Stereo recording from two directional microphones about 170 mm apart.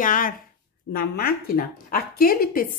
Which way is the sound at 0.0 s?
50° left (ahead or behind).